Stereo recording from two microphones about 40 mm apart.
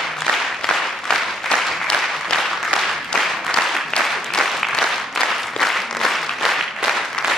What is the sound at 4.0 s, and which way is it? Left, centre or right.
Applause, centre.